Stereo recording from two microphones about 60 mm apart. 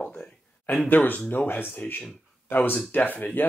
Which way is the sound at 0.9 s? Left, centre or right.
Left.